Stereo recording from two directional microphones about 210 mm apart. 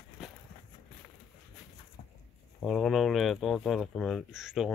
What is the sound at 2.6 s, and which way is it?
Speech, centre (ahead or behind).